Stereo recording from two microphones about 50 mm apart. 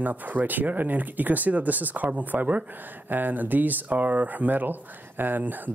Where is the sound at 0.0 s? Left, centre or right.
Right.